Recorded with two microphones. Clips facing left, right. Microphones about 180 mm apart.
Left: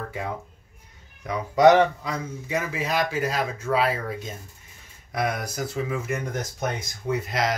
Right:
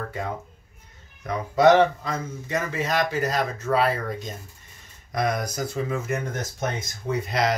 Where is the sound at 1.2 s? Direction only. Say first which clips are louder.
Left 1 dB; 15° left (ahead or behind).